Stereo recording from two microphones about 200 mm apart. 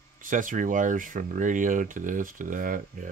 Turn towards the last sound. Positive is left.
turn(degrees=-40)  # may be behind; listen again after turning